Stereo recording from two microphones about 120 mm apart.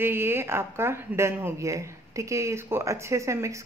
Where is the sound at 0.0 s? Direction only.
20° right (ahead or behind).